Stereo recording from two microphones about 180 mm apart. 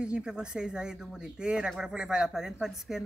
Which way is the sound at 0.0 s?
5° right (ahead or behind).